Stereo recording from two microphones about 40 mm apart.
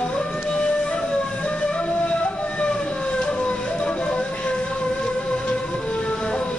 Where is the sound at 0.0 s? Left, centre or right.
Left.